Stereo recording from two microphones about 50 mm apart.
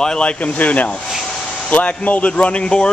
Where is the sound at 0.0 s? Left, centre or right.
Centre.